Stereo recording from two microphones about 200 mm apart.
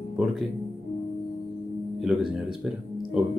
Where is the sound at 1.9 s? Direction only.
Centre (ahead or behind).